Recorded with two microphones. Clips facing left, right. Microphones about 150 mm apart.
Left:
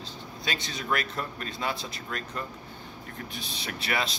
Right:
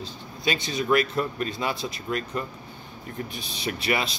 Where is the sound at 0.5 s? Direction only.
10° right (ahead or behind).